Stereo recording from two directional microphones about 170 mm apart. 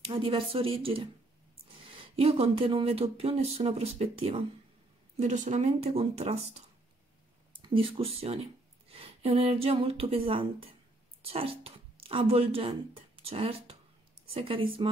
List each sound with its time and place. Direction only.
0.0 s speech: 30° right (ahead or behind)
5.1 s speech: 45° right (ahead or behind)
7.5 s a woman's voice: 30° right (ahead or behind)